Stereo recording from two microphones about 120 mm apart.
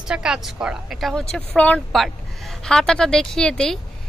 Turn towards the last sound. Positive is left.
turn(degrees=5)  # may be behind; listen again after turning